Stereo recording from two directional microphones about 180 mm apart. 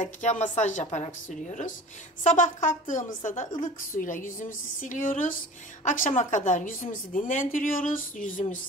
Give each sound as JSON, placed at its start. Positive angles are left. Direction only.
{"t": 0.0, "sound": "a woman's voice", "side_deg": 45}